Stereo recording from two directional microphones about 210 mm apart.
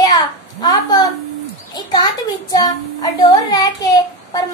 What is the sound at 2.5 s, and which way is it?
Speech, 20° left (ahead or behind).